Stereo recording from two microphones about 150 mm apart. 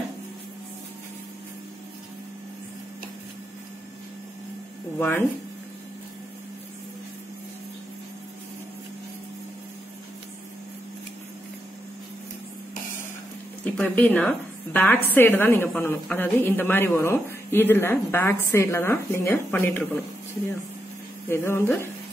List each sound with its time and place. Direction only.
4.9 s speech: 15° left (ahead or behind)
13.7 s a woman's voice: 10° left (ahead or behind)
21.3 s a woman's voice: 15° left (ahead or behind)